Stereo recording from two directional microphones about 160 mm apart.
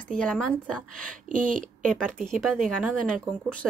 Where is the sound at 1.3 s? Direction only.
55° right (ahead or behind).